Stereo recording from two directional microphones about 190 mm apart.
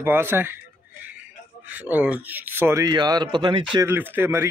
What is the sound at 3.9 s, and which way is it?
Speech, 10° right (ahead or behind).